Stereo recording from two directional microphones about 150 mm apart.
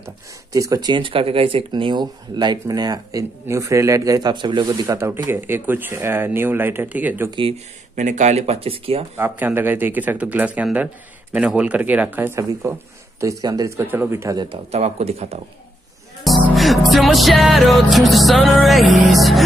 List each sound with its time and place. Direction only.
0.0 s speech: 20° right (ahead or behind)
7.2 s speech: 35° right (ahead or behind)
7.9 s speech: 55° right (ahead or behind); by 9.0 s 40° right (ahead or behind)
9.1 s speech: 10° right (ahead or behind)
14.7 s speech: 45° right (ahead or behind)
16.3 s music: centre (ahead or behind)